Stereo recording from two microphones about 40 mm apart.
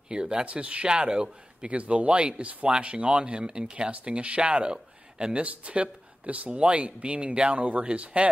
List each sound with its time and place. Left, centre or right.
0.1 s speech: right
0.5 s speech: right
1.7 s speech: right